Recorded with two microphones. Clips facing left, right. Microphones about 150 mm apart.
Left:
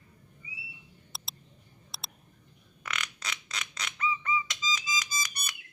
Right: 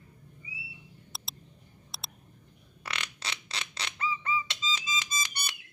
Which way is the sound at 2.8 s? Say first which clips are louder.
Left 1 dB; 30° right (ahead or behind).